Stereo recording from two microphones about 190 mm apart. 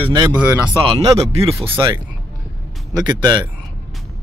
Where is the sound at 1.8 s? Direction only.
20° right (ahead or behind).